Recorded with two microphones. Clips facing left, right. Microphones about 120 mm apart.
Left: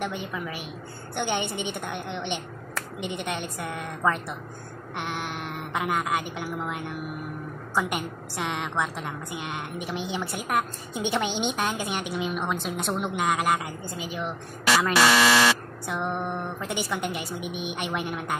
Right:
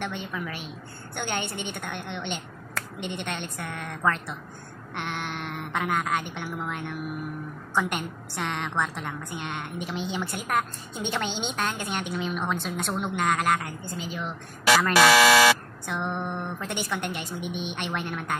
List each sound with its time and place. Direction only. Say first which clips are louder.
0.0 s a woman's voice: left 1 dB; 5° left (ahead or behind)
14.7 s speech: right 2 dB; centre (ahead or behind)
15.9 s a woman's voice: left 1 dB; 10° left (ahead or behind)